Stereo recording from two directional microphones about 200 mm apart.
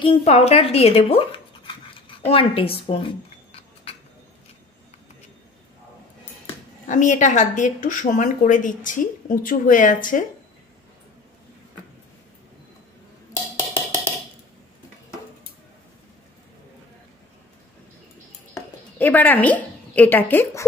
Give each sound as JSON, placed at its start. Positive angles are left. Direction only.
{"t": 0.0, "sound": "a woman's voice", "side_deg": 30}
{"t": 2.0, "sound": "scissors", "side_deg": 25}
{"t": 6.9, "sound": "a woman's voice", "side_deg": 40}
{"t": 18.5, "sound": "a sound", "side_deg": 10}